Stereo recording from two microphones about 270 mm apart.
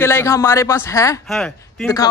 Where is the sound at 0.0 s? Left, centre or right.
Centre.